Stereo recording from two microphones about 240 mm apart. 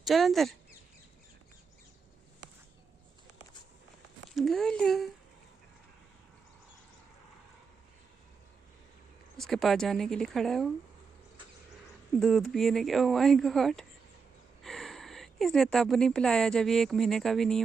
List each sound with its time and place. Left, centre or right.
0.0 s speech: centre
4.4 s speech: centre
9.4 s speech: centre
12.2 s speech: centre